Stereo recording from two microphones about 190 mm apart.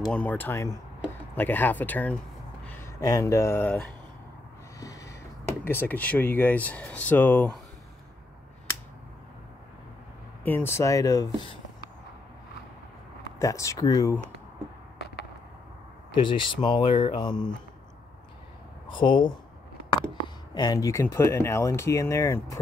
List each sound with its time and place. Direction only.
0.0 s speech: 5° left (ahead or behind)
4.7 s snort: 15° left (ahead or behind)
5.6 s speech: 10° left (ahead or behind)
10.4 s speech: 10° left (ahead or behind)
13.4 s speech: 15° left (ahead or behind)
16.1 s speech: 25° left (ahead or behind)
18.9 s speech: 25° left (ahead or behind)
20.5 s speech: 20° left (ahead or behind)